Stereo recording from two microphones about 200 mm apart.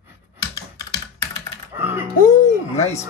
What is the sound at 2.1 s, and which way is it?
Music, 40° left (ahead or behind).